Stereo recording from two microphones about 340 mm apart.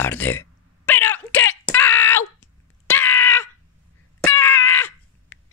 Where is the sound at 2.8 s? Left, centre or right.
Centre.